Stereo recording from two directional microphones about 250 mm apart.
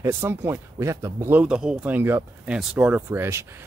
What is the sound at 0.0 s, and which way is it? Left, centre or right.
Speech, centre.